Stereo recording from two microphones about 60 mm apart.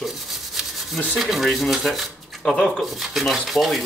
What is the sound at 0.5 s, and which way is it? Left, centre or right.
Rub, centre.